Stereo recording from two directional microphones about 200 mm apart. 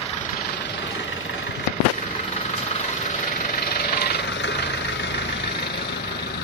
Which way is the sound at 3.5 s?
50° left (ahead or behind).